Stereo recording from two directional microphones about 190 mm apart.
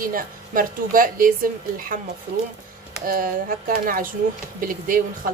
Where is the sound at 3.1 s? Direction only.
45° right (ahead or behind).